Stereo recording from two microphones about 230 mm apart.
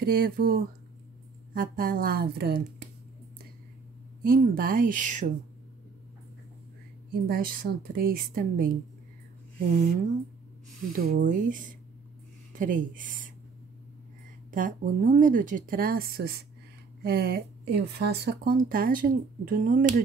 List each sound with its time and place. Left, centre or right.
0.0 s speech: right
4.2 s speech: right
7.1 s speech: right
11.0 s speech: right
14.5 s speech: right